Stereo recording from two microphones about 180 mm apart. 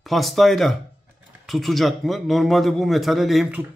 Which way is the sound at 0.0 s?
Centre (ahead or behind).